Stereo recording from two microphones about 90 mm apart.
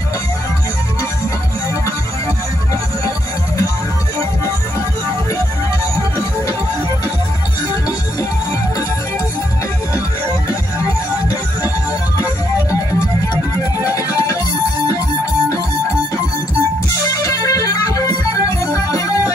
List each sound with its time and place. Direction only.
13.7 s music: 40° left (ahead or behind)
17.2 s music: 40° left (ahead or behind)